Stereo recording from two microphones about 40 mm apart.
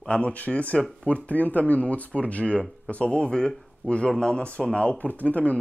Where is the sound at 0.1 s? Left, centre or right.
Left.